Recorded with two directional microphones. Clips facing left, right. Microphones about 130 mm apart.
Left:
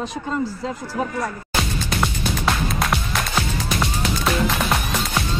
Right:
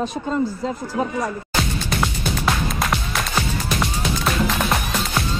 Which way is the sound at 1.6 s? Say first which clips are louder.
Even; centre (ahead or behind).